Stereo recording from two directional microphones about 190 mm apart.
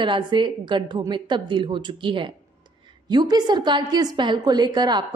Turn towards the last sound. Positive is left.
turn(degrees=-20)  # may be behind; listen again after turning